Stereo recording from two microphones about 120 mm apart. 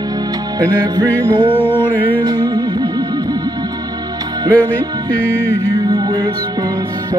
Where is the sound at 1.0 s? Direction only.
15° left (ahead or behind).